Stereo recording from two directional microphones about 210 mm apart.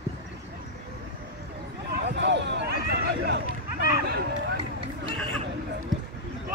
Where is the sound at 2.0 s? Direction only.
55° right (ahead or behind).